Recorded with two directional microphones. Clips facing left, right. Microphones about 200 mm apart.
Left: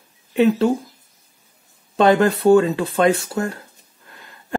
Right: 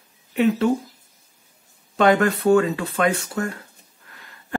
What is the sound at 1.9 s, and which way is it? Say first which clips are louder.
Speech: left 2 dB; 30° left (ahead or behind).